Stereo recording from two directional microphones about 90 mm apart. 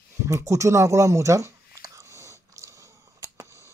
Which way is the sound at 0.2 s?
35° right (ahead or behind).